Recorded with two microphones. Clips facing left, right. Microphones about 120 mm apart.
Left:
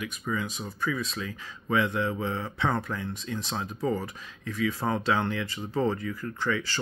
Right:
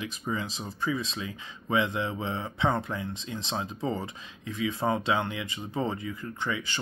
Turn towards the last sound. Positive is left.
turn(degrees=-15)  # may be behind; listen again after turning